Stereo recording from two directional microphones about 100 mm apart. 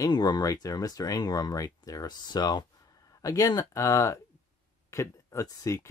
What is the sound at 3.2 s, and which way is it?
Speech, 35° left (ahead or behind).